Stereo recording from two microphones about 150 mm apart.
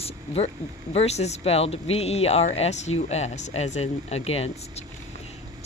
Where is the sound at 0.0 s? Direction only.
45° left (ahead or behind).